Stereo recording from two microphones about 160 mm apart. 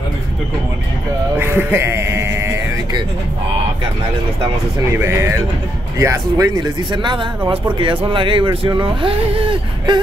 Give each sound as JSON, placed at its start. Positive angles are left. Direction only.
{"t": 1.4, "sound": "sheep", "side_deg": -15}
{"t": 4.9, "sound": "speech", "side_deg": -15}